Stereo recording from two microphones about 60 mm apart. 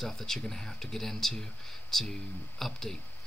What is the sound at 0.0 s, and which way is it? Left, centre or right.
Speech, centre.